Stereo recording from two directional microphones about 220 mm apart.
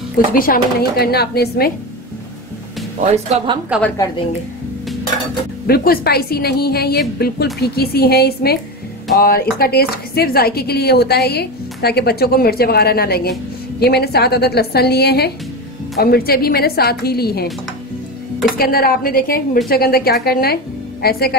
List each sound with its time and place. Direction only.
0.3 s speech: 40° left (ahead or behind)
3.7 s a woman's voice: 5° right (ahead or behind)
5.7 s speech: 45° left (ahead or behind)
18.6 s a woman's voice: 40° left (ahead or behind)